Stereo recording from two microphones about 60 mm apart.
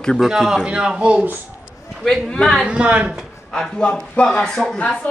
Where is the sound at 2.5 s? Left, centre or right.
Centre.